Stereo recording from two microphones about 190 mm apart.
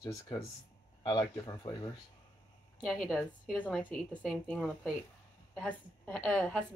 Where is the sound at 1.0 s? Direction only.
20° left (ahead or behind).